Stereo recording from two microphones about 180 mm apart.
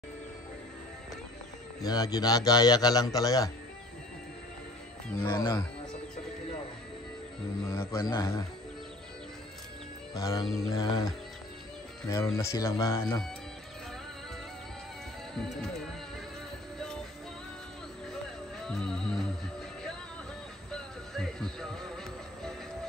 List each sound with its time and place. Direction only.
1.8 s a man's voice: 20° left (ahead or behind)
5.1 s speech: 20° left (ahead or behind)
7.6 s speech: 15° left (ahead or behind)
10.1 s a man's voice: 20° left (ahead or behind)
18.6 s music: 5° left (ahead or behind)
20.7 s music: 5° left (ahead or behind)